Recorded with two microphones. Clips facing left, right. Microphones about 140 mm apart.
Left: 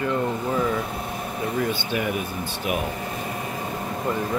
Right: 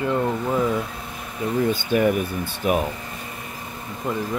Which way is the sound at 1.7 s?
45° right (ahead or behind).